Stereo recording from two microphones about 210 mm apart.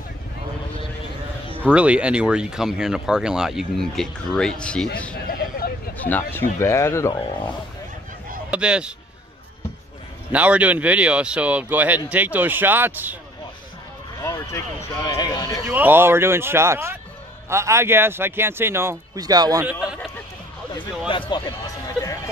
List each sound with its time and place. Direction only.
1.7 s speech: 5° right (ahead or behind)
5.9 s speech: 10° left (ahead or behind)
8.5 s speech: 5° right (ahead or behind)
10.3 s speech: 5° right (ahead or behind)
14.2 s speech: 15° left (ahead or behind)
15.7 s speech: 10° right (ahead or behind)
19.6 s a sound: 5° right (ahead or behind)
21.3 s music: 20° left (ahead or behind)